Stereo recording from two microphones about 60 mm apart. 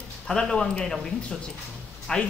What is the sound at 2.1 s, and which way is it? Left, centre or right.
Speech, centre.